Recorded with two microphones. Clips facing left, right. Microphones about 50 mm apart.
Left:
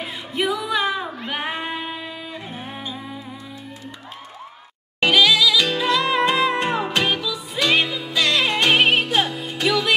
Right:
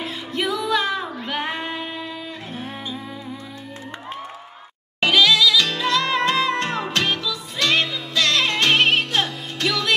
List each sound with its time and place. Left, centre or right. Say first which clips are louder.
0.0 s music: left 1 dB; centre
5.0 s music: even; centre